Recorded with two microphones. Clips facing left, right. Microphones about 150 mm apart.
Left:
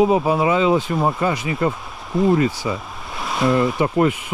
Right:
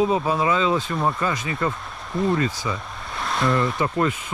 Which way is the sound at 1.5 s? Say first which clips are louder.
Left 4 dB; 30° left (ahead or behind).